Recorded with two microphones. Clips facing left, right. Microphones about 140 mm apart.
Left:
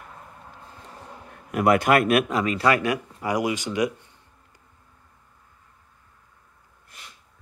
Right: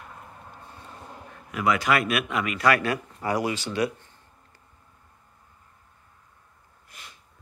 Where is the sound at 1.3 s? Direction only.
55° left (ahead or behind); by 4.6 s 15° left (ahead or behind).